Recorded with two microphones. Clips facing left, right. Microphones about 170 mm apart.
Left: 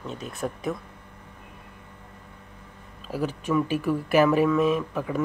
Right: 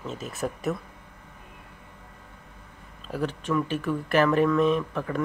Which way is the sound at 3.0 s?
5° left (ahead or behind).